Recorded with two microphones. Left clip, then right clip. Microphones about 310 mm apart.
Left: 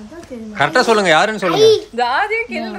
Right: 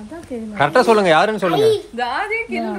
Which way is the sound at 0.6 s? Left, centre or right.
Centre.